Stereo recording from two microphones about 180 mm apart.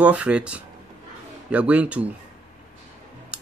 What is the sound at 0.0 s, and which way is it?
Speech, 5° right (ahead or behind).